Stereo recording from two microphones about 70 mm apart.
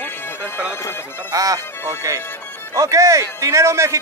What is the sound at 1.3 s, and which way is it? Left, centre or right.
Music, right.